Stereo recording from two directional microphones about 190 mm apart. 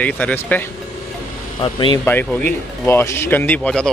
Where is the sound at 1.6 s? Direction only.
25° left (ahead or behind).